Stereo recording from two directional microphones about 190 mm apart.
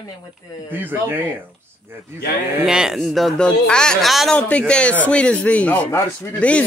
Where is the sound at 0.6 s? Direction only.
10° right (ahead or behind).